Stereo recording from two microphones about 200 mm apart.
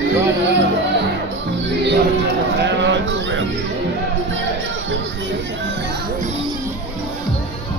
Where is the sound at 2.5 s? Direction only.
60° right (ahead or behind).